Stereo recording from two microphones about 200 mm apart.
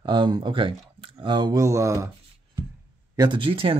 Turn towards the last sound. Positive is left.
turn(degrees=-25)  # may be behind; listen again after turning